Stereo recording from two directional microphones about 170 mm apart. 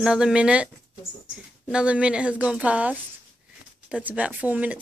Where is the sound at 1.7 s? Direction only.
5° right (ahead or behind).